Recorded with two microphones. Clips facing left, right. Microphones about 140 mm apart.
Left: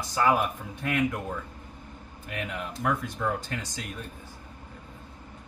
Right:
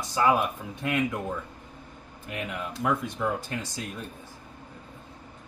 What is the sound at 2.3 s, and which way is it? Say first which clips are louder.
Speech: right 1 dB; 20° right (ahead or behind).